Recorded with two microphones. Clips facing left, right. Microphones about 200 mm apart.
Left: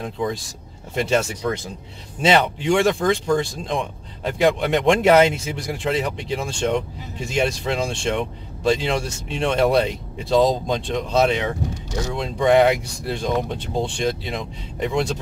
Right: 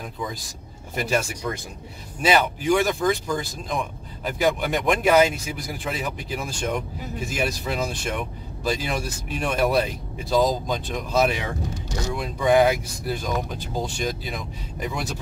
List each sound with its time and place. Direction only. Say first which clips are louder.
0.0 s speech: left 7 dB; 30° left (ahead or behind)